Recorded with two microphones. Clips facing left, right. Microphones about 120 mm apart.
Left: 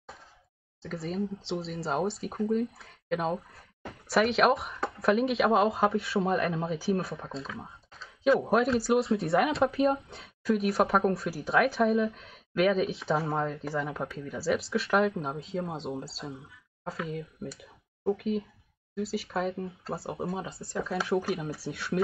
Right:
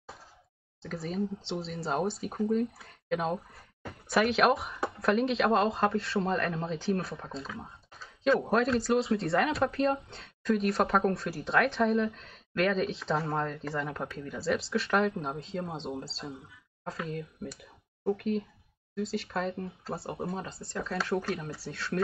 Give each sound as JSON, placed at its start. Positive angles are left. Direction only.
{"t": 0.8, "sound": "speech", "side_deg": 0}